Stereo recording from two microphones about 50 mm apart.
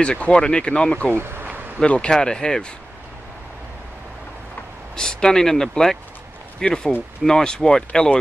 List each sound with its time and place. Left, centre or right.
0.0 s speech: centre
1.1 s speech: right
1.8 s speech: centre
4.9 s speech: centre